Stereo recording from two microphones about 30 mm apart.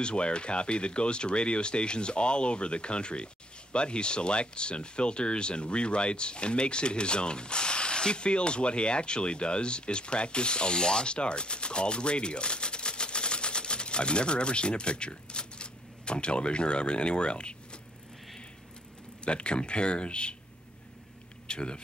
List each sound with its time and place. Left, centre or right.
0.0 s speech: left
19.2 s speech: left
21.5 s a sound: left